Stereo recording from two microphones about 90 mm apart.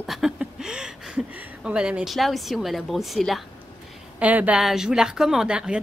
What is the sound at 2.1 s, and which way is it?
A woman's voice, centre (ahead or behind).